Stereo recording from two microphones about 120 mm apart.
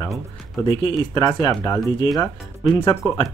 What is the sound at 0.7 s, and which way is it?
Speech, 35° left (ahead or behind).